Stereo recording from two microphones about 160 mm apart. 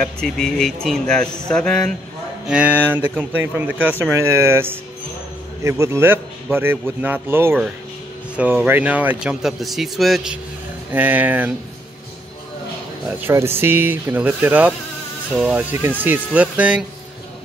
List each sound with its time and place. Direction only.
0.0 s speech: 5° left (ahead or behind)
2.4 s a man's voice: 10° right (ahead or behind)
13.2 s a man's voice: 15° right (ahead or behind)